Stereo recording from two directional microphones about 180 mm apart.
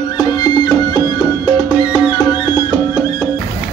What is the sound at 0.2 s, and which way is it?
Music, 20° left (ahead or behind).